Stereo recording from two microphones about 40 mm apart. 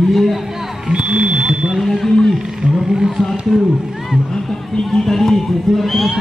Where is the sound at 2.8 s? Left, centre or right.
Centre.